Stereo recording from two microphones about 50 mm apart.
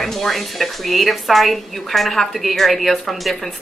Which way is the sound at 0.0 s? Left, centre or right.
Centre.